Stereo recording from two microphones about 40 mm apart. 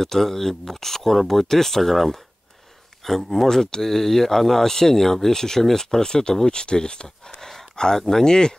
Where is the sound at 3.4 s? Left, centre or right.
Centre.